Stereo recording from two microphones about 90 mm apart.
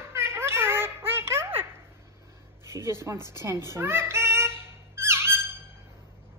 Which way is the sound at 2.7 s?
30° right (ahead or behind).